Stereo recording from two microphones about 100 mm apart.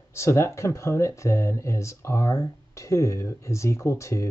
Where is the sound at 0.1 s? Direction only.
30° left (ahead or behind).